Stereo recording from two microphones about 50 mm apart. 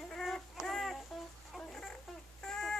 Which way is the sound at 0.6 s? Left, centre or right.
Centre.